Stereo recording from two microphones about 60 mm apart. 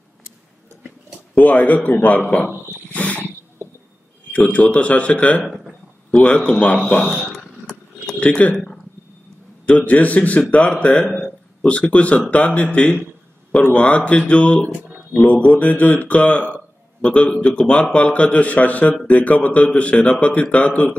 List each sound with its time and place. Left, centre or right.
1.3 s a man's voice: left
2.4 s dog: left
4.3 s a man's voice: left
5.4 s a sound: centre
6.2 s a man's voice: left
7.0 s a sound: centre
8.2 s speech: left
9.7 s a man's voice: left